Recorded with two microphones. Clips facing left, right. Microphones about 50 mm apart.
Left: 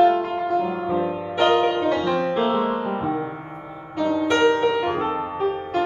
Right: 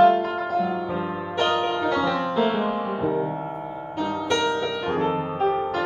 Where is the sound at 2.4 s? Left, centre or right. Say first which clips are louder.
Left 1 dB; centre.